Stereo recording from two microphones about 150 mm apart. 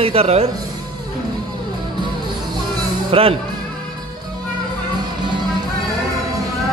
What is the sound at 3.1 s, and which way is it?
Speech, 40° right (ahead or behind).